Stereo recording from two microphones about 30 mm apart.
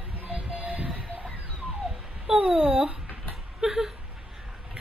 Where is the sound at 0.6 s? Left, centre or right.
Right.